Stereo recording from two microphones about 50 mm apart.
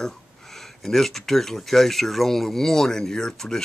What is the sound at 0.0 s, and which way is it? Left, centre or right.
Speech, centre.